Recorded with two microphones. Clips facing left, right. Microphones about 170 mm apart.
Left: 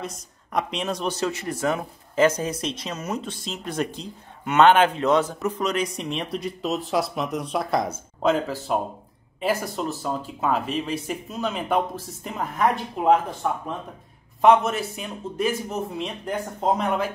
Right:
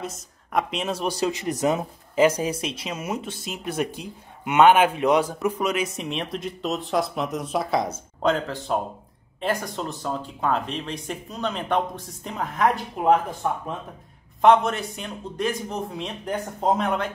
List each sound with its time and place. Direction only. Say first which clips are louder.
0.0 s speech: even; centre (ahead or behind)
14.4 s speech: even; 5° left (ahead or behind)